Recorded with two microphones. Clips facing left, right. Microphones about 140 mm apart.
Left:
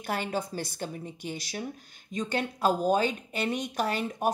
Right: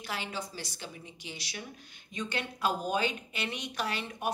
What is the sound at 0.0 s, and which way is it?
A woman's voice, 50° left (ahead or behind).